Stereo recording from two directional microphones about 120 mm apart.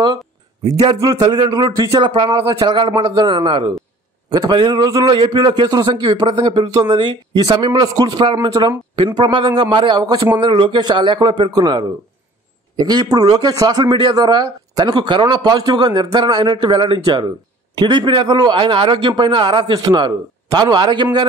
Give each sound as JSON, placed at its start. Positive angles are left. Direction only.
{"t": 0.7, "sound": "speech", "side_deg": -35}
{"t": 6.4, "sound": "speech", "side_deg": -45}
{"t": 6.7, "sound": "speech", "side_deg": -35}